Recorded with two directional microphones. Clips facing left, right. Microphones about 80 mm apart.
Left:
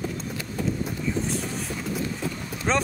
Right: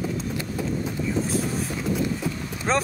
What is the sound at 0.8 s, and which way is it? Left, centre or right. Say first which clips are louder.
Vehicle: right 2 dB; centre.